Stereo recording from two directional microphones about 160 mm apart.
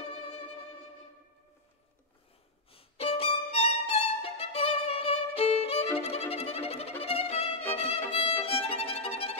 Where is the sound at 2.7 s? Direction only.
35° left (ahead or behind).